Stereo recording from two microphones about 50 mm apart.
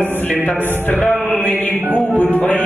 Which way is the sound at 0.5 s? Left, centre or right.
Left.